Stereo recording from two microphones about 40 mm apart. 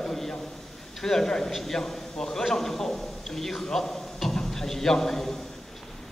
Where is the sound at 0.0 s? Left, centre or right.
Centre.